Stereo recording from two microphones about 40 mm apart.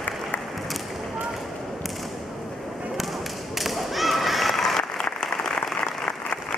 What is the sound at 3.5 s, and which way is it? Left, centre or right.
Whip, centre.